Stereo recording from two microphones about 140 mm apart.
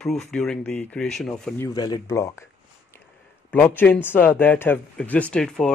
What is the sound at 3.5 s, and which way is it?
Speech, 10° left (ahead or behind).